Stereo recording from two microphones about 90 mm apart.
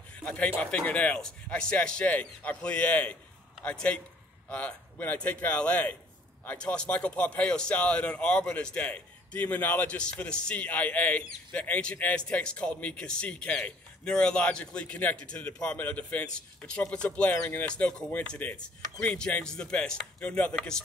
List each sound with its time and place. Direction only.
0.2 s speech: 15° left (ahead or behind)